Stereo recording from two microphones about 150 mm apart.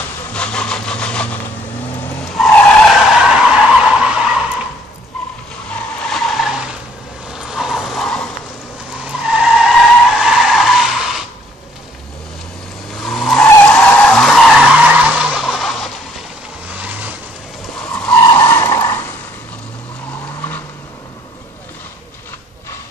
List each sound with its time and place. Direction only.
0.3 s sawing: 5° left (ahead or behind)
2.3 s vehicle: centre (ahead or behind)
6.0 s vehicle: centre (ahead or behind)
9.0 s skidding: 5° right (ahead or behind)
12.9 s vehicle: centre (ahead or behind)
13.5 s vehicle: 10° left (ahead or behind); by 17.1 s 10° right (ahead or behind)
17.7 s skidding: 5° left (ahead or behind)
18.5 s vehicle: 15° left (ahead or behind)